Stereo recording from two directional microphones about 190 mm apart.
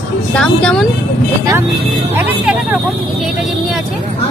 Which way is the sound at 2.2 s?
5° right (ahead or behind).